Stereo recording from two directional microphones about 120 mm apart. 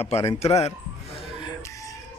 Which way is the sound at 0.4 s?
60° left (ahead or behind).